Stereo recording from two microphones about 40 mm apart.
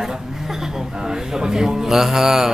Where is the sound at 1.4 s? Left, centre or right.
Centre.